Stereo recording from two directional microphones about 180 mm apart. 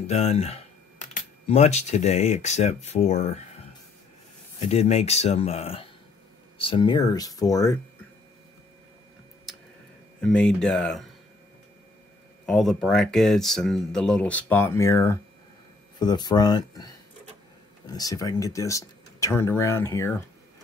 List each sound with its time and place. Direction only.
0.0 s speech: 35° left (ahead or behind)
4.6 s speech: 35° left (ahead or behind); by 7.8 s 20° left (ahead or behind)
10.2 s speech: 5° left (ahead or behind)
12.4 s speech: 5° left (ahead or behind)